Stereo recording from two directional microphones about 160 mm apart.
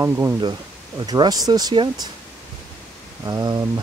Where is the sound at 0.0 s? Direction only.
15° right (ahead or behind).